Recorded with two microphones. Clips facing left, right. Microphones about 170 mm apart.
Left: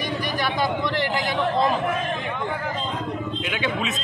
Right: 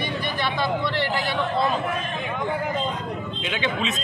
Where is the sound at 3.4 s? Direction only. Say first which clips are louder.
Right 2 dB; 5° left (ahead or behind).